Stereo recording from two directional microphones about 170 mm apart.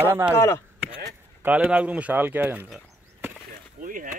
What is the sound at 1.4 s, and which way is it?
Speech, 10° right (ahead or behind).